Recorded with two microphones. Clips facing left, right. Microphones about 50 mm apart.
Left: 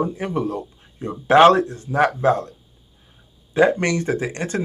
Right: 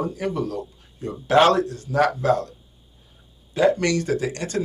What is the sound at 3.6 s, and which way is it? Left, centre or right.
Speech, left.